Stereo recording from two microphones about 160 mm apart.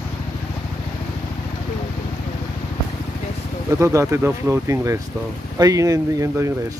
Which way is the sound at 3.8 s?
15° right (ahead or behind).